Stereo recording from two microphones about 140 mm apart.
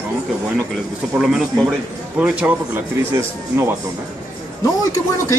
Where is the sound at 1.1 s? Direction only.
5° right (ahead or behind).